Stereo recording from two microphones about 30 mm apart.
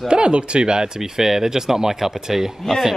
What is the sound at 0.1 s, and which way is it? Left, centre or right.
Speech, right.